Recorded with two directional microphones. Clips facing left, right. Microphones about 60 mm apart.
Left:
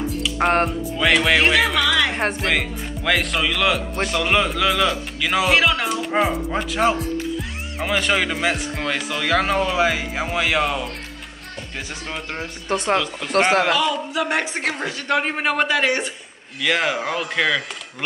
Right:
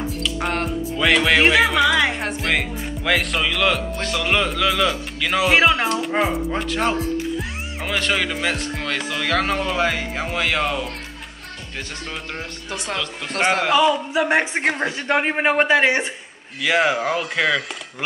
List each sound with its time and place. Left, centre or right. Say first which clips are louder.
0.4 s speech: left 7 dB; left
0.9 s speech: even; centre
1.4 s music: right 2 dB; centre
3.1 s speech: even; centre
5.5 s speech: right 3 dB; right
5.9 s speech: even; centre
12.6 s speech: left 8 dB; left
13.7 s speech: right 3 dB; centre
16.6 s speech: right 2 dB; centre